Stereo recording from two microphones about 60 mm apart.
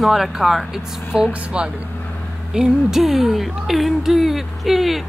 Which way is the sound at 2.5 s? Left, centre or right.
Centre.